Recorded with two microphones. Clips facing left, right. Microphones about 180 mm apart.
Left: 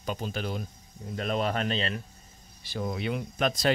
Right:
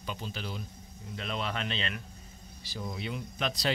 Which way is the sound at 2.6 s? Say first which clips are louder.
Left 6 dB; 60° left (ahead or behind).